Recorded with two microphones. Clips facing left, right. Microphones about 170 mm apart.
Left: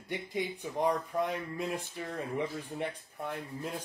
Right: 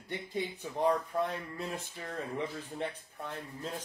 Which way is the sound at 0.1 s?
15° left (ahead or behind).